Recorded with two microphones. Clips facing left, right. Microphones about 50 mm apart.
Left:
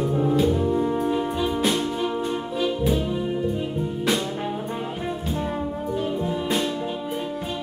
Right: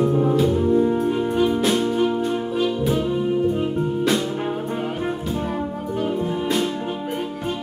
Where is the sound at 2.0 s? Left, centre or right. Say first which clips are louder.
Right 4 dB; centre.